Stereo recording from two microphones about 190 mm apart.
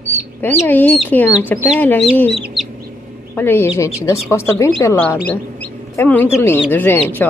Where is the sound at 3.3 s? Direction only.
10° left (ahead or behind).